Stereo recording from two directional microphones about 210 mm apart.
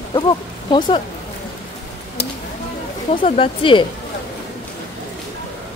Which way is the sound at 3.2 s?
25° left (ahead or behind).